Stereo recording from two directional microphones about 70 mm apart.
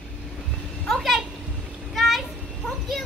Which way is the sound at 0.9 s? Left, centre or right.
Centre.